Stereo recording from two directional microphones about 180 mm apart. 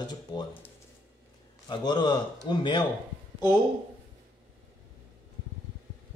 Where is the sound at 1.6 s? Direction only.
25° left (ahead or behind).